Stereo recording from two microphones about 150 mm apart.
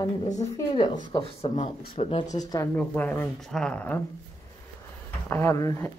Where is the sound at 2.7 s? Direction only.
10° left (ahead or behind).